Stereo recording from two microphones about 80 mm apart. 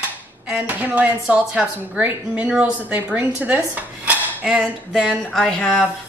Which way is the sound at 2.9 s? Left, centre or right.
Right.